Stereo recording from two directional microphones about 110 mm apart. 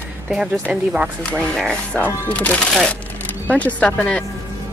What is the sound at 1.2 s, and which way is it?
Speech, 5° left (ahead or behind).